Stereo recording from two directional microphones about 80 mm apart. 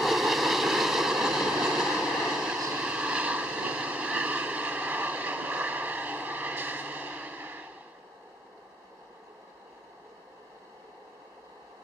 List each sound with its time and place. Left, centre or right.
0.0 s vehicle: centre; by 7.6 s right